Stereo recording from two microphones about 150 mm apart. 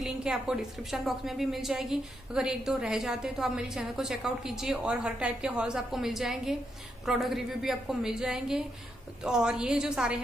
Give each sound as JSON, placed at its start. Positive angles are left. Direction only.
{"t": 0.0, "sound": "a woman's voice", "side_deg": -5}